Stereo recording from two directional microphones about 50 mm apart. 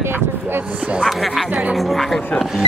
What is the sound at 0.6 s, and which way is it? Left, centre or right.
Speech, right.